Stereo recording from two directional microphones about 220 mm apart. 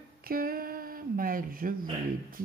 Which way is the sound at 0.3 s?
40° right (ahead or behind).